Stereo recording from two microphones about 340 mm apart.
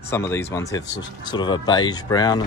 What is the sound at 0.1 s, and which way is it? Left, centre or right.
Speech, centre.